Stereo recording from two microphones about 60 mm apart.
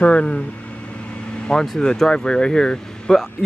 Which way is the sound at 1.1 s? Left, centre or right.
Centre.